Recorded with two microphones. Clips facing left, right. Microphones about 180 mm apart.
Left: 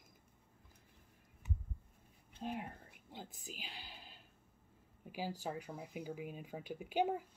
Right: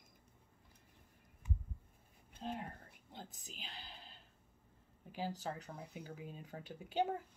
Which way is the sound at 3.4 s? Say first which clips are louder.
Left 2 dB; 10° left (ahead or behind).